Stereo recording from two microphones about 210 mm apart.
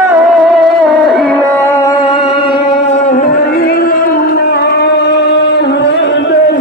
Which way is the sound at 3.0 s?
40° left (ahead or behind).